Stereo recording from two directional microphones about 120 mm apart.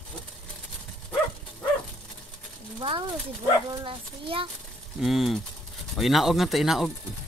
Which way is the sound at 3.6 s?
45° right (ahead or behind).